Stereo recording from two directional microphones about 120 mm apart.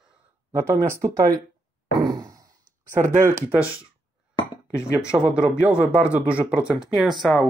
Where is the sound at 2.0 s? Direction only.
30° right (ahead or behind).